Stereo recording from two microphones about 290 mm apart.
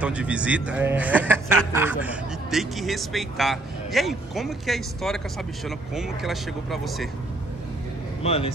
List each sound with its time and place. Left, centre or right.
0.0 s speech: centre
8.2 s a man's voice: centre